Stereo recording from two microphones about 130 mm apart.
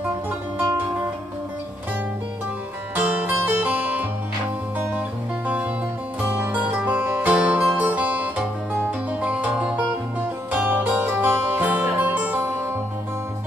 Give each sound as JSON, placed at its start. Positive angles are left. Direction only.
{"t": 3.0, "sound": "music", "side_deg": -15}
{"t": 6.2, "sound": "music", "side_deg": -10}